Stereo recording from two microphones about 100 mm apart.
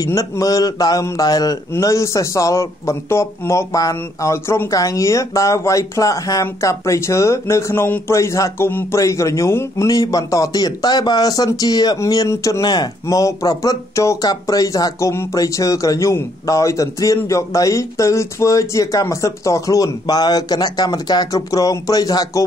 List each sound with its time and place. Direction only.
0.0 s a man's voice: 35° left (ahead or behind)